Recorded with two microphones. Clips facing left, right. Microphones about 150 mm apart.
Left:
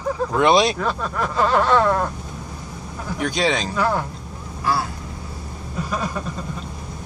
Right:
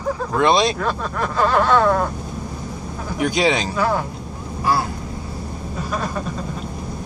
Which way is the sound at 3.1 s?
10° right (ahead or behind).